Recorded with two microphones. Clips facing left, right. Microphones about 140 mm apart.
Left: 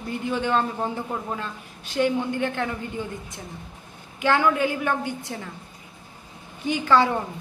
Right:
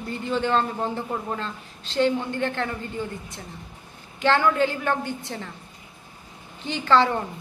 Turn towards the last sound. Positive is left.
turn(degrees=10)  # may be behind; listen again after turning